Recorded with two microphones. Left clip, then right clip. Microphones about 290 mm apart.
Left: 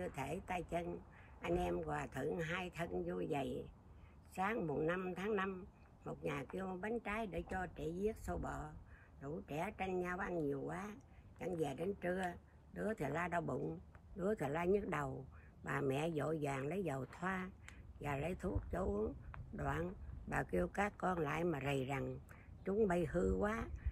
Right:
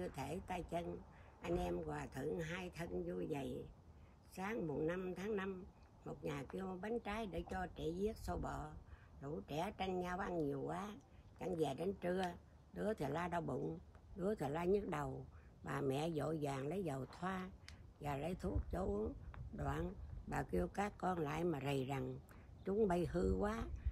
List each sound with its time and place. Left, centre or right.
0.0 s speech: centre